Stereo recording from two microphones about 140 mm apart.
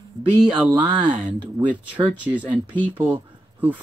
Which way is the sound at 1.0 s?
60° right (ahead or behind).